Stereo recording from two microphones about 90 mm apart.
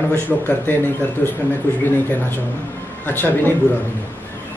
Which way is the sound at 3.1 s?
25° left (ahead or behind).